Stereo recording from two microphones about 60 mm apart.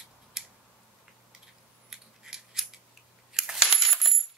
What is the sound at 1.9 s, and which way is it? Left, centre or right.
Scissors, centre.